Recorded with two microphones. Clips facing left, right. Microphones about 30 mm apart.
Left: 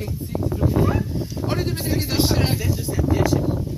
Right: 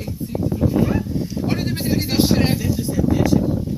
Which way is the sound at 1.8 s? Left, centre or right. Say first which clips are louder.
Right 5 dB; right.